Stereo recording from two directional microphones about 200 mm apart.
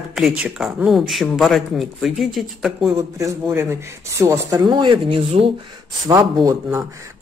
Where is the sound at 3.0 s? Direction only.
15° right (ahead or behind).